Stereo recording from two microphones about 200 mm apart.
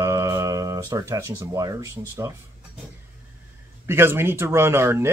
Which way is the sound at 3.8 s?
10° right (ahead or behind).